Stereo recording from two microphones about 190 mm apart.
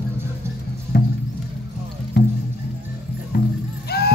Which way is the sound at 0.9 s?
55° left (ahead or behind).